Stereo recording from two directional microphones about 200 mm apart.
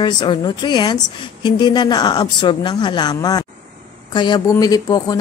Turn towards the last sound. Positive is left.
turn(degrees=20)  # may be behind; listen again after turning